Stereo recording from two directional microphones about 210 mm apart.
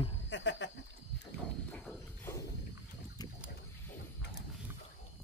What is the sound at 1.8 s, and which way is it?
Horse, 10° left (ahead or behind).